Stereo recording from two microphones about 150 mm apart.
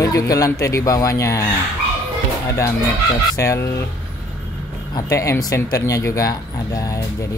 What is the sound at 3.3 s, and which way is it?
Speech, 20° left (ahead or behind).